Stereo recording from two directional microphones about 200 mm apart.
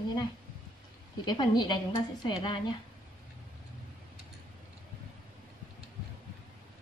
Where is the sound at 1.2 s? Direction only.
20° left (ahead or behind).